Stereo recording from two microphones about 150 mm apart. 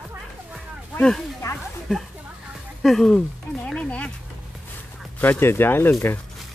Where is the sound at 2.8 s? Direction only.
5° left (ahead or behind).